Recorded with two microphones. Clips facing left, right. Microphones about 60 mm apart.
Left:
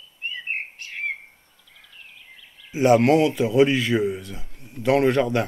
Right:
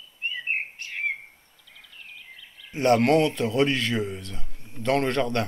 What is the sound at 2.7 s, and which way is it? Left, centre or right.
Speech, centre.